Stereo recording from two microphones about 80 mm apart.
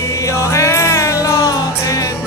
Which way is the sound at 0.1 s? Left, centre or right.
Left.